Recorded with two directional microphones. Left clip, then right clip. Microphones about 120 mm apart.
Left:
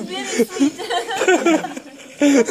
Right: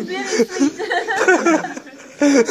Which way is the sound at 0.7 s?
90° left.